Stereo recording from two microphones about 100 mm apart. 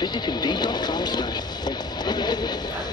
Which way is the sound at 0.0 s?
45° left (ahead or behind).